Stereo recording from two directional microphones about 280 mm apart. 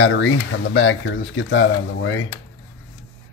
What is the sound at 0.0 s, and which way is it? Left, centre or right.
Speech, left.